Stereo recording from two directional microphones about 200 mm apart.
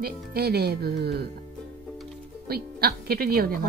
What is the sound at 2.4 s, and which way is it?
Speech, 50° right (ahead or behind).